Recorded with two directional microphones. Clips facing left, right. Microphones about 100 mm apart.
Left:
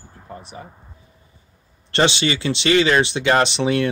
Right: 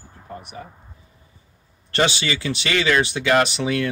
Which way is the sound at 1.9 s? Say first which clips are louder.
Left 3 dB; 25° left (ahead or behind).